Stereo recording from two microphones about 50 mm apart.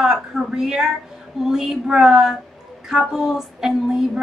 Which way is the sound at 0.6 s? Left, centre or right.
Centre.